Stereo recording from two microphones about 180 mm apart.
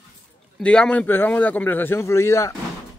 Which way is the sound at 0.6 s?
5° left (ahead or behind).